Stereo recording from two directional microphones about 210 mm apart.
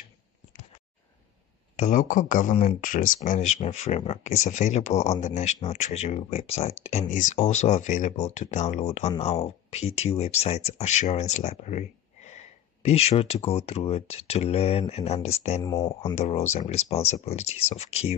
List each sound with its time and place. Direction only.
1.8 s speech: 40° left (ahead or behind)
15.6 s speech: 15° left (ahead or behind)
16.0 s speech: 30° left (ahead or behind)